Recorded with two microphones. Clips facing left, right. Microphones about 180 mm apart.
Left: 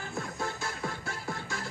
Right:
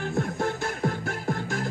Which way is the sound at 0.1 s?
55° right (ahead or behind).